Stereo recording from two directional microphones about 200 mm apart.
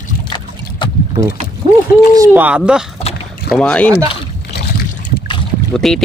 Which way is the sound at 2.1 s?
10° right (ahead or behind).